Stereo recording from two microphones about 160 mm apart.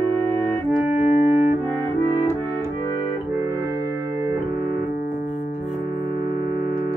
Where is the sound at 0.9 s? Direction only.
50° left (ahead or behind).